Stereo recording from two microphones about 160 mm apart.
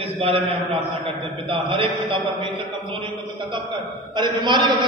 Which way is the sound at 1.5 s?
30° right (ahead or behind).